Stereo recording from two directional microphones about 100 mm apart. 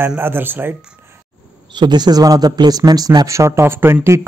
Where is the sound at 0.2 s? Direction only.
20° right (ahead or behind).